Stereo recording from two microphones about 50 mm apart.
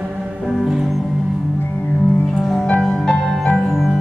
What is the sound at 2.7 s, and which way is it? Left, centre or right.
Music, centre.